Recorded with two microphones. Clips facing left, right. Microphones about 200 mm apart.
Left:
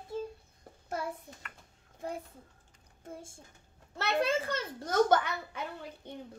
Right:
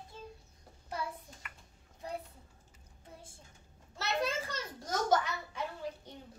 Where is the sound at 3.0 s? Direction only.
45° left (ahead or behind).